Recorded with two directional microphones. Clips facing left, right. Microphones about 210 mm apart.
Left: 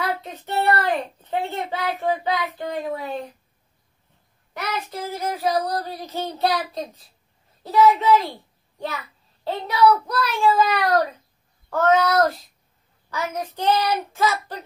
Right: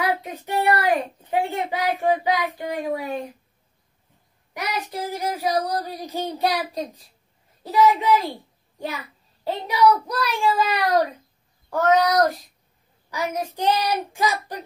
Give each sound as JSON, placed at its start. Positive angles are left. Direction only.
{"t": 0.0, "sound": "speech", "side_deg": -15}
{"t": 1.2, "sound": "child singing", "side_deg": -15}
{"t": 4.6, "sound": "child singing", "side_deg": -15}
{"t": 7.6, "sound": "a child's voice", "side_deg": -15}
{"t": 11.7, "sound": "child singing", "side_deg": -15}